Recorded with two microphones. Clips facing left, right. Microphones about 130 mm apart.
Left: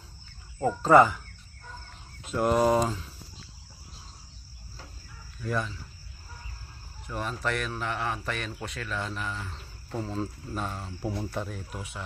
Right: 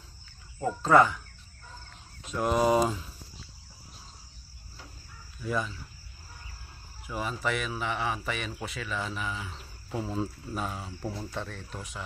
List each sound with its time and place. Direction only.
0.6 s speech: 5° left (ahead or behind)
2.2 s speech: 5° left (ahead or behind)
5.4 s speech: centre (ahead or behind)
7.1 s speech: 5° right (ahead or behind)